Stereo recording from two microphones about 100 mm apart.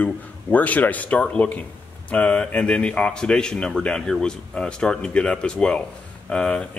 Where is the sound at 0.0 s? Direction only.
15° left (ahead or behind).